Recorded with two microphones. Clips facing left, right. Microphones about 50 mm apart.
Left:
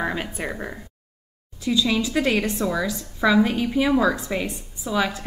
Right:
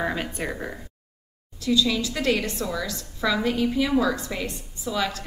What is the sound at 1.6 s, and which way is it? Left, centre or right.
A woman's voice, centre.